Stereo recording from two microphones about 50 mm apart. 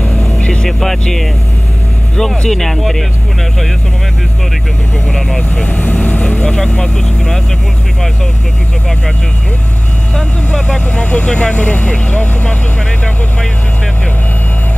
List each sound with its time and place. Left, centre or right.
0.0 s vehicle: centre
0.4 s vehicle: left
0.7 s speech: centre
2.1 s speech: centre
5.1 s speech: centre
5.7 s speech: left
6.4 s speech: centre
10.1 s speech: centre
11.1 s speech: left